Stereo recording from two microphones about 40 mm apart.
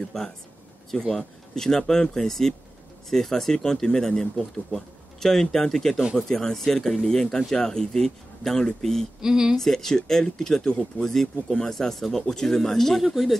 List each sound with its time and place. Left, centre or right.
0.0 s speech: centre
4.7 s speech: centre
9.2 s speech: centre
9.6 s speech: centre
13.0 s speech: centre